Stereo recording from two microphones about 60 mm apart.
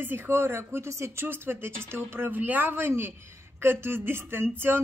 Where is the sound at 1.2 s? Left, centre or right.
Right.